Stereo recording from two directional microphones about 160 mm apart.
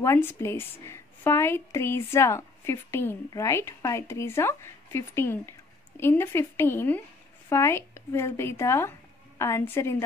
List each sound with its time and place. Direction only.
0.0 s a woman's voice: 15° left (ahead or behind)